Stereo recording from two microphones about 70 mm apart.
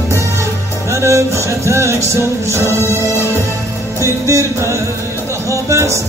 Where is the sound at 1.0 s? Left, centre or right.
Right.